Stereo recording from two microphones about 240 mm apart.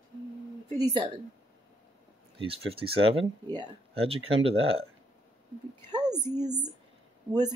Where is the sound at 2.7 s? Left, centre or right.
Right.